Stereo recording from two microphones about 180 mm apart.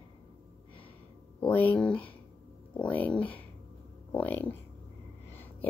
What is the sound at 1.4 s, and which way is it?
A woman's voice, 10° left (ahead or behind).